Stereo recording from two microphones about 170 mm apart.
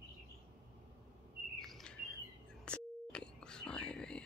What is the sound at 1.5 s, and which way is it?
Bird, centre (ahead or behind).